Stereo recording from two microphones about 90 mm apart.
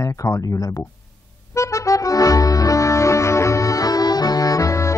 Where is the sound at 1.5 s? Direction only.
35° left (ahead or behind).